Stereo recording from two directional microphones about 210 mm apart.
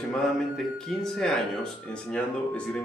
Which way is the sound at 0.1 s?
Centre (ahead or behind).